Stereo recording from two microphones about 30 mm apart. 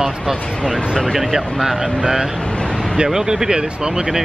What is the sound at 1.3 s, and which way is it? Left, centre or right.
Speech, centre.